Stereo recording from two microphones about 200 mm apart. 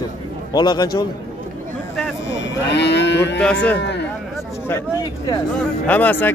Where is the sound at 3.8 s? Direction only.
60° left (ahead or behind).